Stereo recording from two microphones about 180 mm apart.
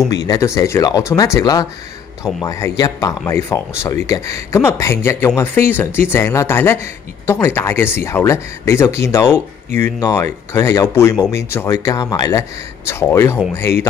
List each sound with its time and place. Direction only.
0.6 s speech: 15° left (ahead or behind)